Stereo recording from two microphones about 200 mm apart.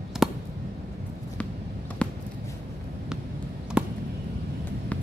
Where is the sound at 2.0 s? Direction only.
5° left (ahead or behind).